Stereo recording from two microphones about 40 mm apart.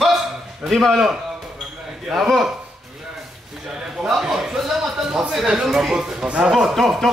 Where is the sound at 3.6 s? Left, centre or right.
Centre.